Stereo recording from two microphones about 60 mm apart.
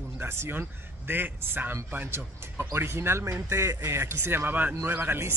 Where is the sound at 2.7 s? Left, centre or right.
Right.